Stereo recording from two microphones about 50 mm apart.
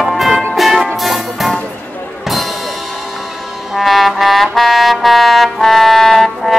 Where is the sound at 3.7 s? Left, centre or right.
Centre.